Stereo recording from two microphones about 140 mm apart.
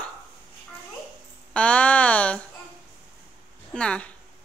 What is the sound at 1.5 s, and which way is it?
Speech, 10° left (ahead or behind).